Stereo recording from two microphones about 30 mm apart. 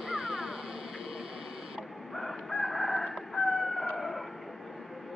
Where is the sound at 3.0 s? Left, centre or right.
Centre.